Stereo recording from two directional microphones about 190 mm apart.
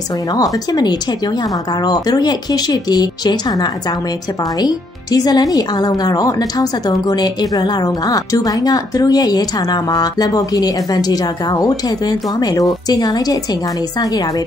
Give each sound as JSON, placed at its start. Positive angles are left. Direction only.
{"t": 0.3, "sound": "speech", "side_deg": 20}